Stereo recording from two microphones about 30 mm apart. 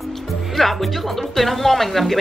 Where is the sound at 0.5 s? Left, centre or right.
Centre.